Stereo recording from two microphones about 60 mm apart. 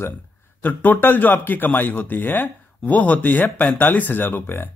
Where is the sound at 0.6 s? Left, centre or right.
Left.